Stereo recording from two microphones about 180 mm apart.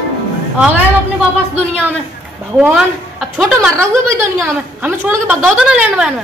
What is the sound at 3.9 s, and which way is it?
A woman's voice, 15° right (ahead or behind).